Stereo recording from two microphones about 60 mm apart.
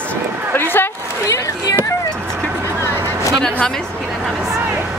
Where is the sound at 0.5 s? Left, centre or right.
Left.